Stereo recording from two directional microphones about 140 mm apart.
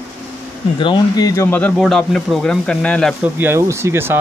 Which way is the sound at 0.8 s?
30° left (ahead or behind).